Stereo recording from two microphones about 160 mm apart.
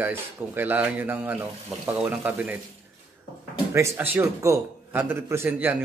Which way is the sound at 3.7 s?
15° right (ahead or behind).